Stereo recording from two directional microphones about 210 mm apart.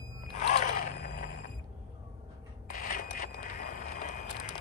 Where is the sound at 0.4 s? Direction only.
35° left (ahead or behind).